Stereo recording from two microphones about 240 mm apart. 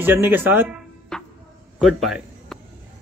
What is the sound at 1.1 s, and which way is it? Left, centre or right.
Music, centre.